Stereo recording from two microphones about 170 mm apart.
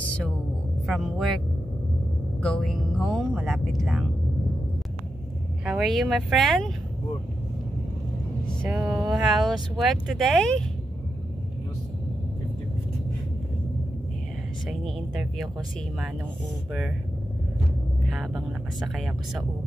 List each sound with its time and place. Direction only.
0.0 s a sound: 5° left (ahead or behind)
0.8 s speech: centre (ahead or behind)
2.4 s speech: centre (ahead or behind)
5.7 s speech: centre (ahead or behind)
8.6 s speech: 10° right (ahead or behind)
14.7 s speech: centre (ahead or behind)
18.0 s speech: centre (ahead or behind)